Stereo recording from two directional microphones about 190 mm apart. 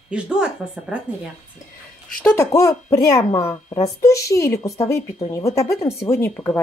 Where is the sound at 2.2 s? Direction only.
15° left (ahead or behind).